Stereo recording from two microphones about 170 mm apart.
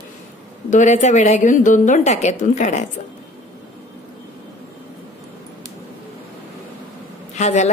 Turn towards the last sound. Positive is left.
turn(degrees=40)  # may be behind; listen again after turning